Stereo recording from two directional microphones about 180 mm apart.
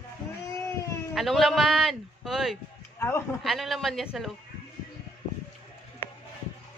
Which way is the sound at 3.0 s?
15° left (ahead or behind).